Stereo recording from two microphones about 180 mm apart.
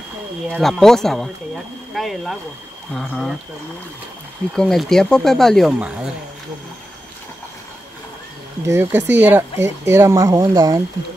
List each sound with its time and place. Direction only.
0.6 s speech: centre (ahead or behind)
4.6 s speech: 5° left (ahead or behind)
8.6 s speech: 15° right (ahead or behind)